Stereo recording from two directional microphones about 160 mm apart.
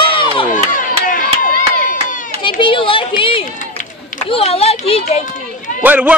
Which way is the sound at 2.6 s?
30° left (ahead or behind).